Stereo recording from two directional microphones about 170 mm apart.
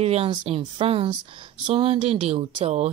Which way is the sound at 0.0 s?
35° right (ahead or behind).